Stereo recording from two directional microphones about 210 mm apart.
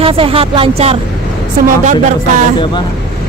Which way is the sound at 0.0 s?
25° right (ahead or behind).